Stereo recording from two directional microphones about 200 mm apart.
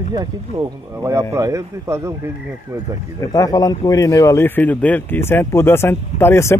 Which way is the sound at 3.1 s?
15° left (ahead or behind).